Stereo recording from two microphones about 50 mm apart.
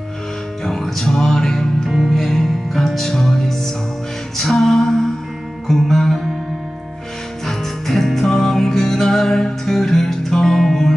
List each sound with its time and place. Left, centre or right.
0.7 s music: centre
1.9 s music: centre
7.4 s music: centre